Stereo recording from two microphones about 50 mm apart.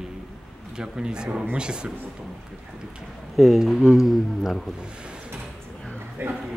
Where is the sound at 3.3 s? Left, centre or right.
Centre.